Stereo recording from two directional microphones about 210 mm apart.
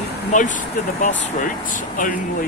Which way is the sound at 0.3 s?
35° left (ahead or behind).